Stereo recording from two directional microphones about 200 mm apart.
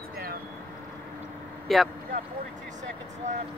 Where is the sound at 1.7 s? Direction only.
Centre (ahead or behind).